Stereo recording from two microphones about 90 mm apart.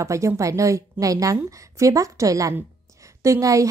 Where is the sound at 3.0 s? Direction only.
35° right (ahead or behind).